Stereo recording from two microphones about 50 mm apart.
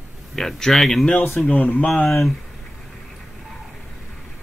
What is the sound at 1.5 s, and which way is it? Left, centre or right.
Speech, left.